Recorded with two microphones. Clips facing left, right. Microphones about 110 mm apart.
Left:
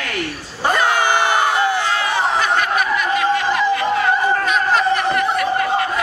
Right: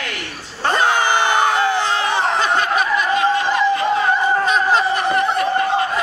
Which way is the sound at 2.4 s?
25° right (ahead or behind).